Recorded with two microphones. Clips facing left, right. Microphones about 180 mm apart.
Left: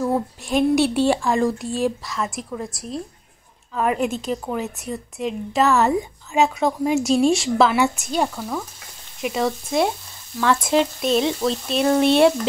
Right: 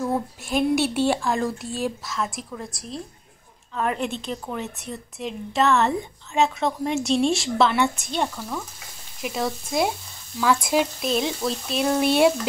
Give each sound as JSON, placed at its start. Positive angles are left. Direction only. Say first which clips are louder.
{"t": 0.5, "sound": "a woman's voice", "louder": "left 4 dB", "side_deg": 0}